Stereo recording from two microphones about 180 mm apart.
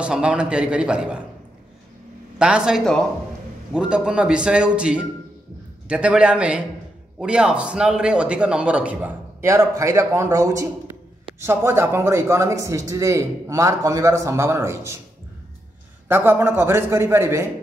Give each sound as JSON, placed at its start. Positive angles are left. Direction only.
{"t": 0.0, "sound": "a man's voice", "side_deg": -5}
{"t": 2.3, "sound": "a man's voice", "side_deg": -5}
{"t": 16.1, "sound": "speech", "side_deg": -10}